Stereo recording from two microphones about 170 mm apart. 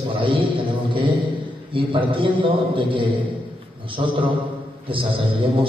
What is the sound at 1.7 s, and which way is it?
A man's voice, 30° right (ahead or behind).